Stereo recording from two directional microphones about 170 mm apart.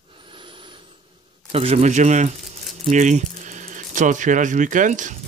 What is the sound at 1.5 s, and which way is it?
Speech, 35° right (ahead or behind).